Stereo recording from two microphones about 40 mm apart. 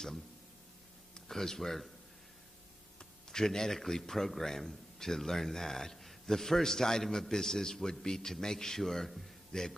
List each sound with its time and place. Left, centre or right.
1.3 s speech: centre
3.0 s speech: centre
9.5 s a man's voice: centre